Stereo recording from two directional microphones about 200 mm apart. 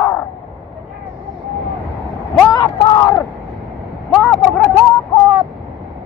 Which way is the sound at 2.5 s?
20° left (ahead or behind).